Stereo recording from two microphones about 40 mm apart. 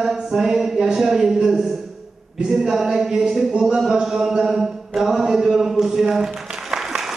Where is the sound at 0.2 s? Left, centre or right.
Centre.